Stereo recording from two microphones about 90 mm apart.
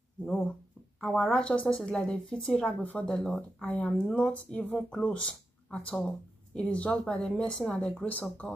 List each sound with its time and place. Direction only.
1.0 s speech: 5° left (ahead or behind)
2.8 s speech: 15° left (ahead or behind)
3.6 s speech: 15° left (ahead or behind)